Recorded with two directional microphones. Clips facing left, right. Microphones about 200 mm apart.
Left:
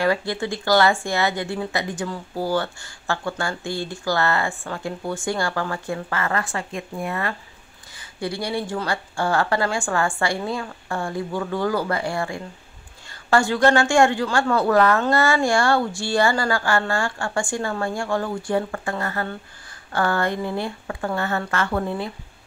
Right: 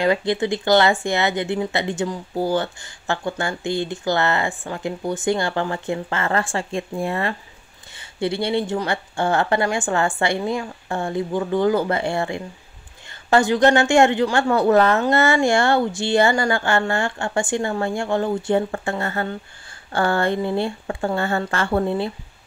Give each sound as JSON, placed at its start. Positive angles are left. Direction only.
{"t": 0.0, "sound": "speech", "side_deg": -20}